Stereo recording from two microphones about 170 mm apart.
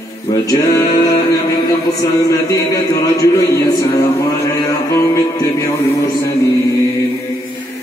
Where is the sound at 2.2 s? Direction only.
20° left (ahead or behind).